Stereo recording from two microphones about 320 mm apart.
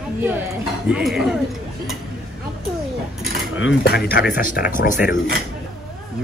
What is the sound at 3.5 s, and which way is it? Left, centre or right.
Cutlery, left.